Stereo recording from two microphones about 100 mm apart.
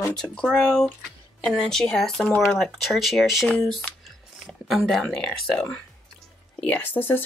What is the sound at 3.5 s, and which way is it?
Speech, 10° left (ahead or behind).